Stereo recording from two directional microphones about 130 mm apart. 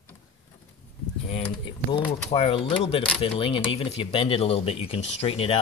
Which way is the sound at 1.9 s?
45° left (ahead or behind).